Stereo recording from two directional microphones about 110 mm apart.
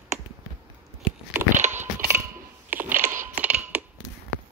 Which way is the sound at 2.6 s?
15° right (ahead or behind).